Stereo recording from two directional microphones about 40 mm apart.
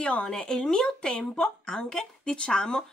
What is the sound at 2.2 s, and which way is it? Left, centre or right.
Speech, left.